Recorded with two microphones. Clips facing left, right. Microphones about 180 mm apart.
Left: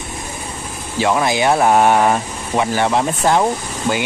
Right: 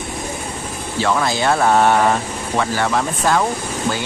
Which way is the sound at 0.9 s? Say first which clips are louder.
Left 2 dB; 15° left (ahead or behind).